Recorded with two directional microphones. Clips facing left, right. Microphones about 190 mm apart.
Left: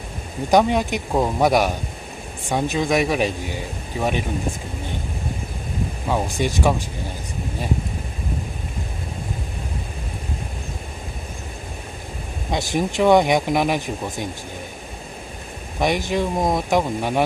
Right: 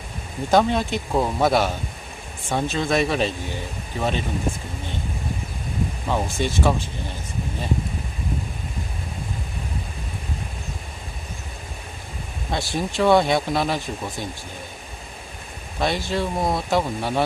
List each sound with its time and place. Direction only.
0.5 s speech: 15° left (ahead or behind)
6.0 s speech: 15° left (ahead or behind)
12.4 s speech: 15° left (ahead or behind)
15.8 s speech: 15° left (ahead or behind)